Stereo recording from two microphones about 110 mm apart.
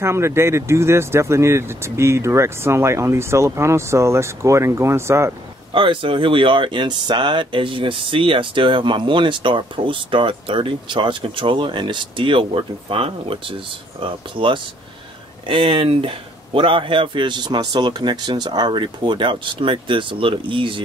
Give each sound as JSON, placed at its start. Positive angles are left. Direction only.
{"t": 0.0, "sound": "speech", "side_deg": -25}
{"t": 5.7, "sound": "speech", "side_deg": -50}